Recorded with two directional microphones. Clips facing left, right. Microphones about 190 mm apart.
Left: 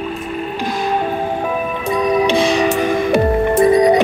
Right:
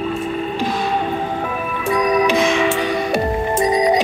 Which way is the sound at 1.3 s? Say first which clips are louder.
Left 3 dB; 15° left (ahead or behind).